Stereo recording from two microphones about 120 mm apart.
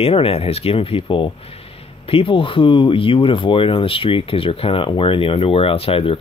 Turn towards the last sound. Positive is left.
turn(degrees=50)  # may be behind; listen again after turning